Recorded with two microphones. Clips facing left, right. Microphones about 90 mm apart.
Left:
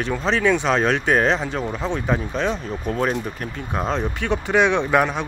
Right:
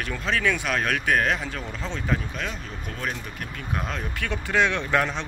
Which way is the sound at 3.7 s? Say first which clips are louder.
Left 8 dB; 25° left (ahead or behind).